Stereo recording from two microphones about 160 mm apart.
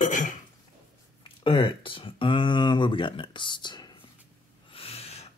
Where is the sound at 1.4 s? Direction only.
30° left (ahead or behind).